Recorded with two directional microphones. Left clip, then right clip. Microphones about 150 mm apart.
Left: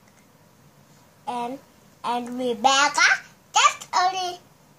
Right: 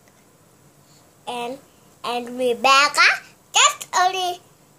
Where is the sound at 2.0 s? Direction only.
20° right (ahead or behind).